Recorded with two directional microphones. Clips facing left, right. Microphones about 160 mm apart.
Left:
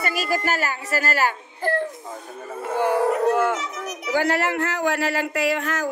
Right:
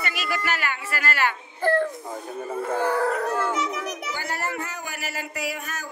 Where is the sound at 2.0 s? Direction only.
15° right (ahead or behind).